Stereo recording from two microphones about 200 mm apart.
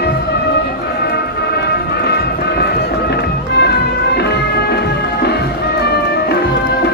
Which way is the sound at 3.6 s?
55° left (ahead or behind).